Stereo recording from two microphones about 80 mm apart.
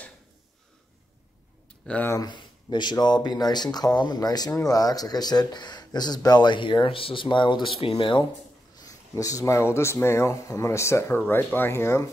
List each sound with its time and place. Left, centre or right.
1.8 s speech: centre
2.2 s speech: left
8.7 s speech: left